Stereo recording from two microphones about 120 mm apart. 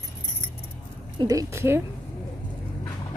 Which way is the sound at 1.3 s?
25° right (ahead or behind).